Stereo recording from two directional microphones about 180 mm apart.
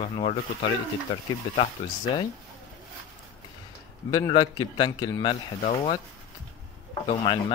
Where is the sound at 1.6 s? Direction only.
30° left (ahead or behind).